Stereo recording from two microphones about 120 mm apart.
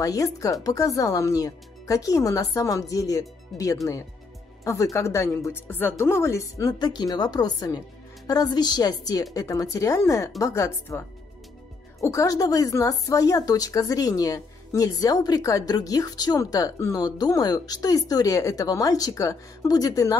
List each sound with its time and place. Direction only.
0.0 s a woman's voice: 30° left (ahead or behind)
6.7 s a woman's voice: 35° left (ahead or behind)